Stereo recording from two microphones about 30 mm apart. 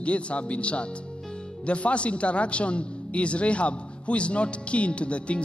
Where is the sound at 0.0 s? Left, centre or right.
Left.